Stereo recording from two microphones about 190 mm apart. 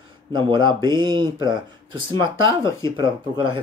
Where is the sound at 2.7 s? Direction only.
15° left (ahead or behind).